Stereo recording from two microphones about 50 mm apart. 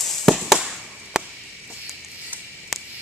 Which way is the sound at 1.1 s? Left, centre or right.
Centre.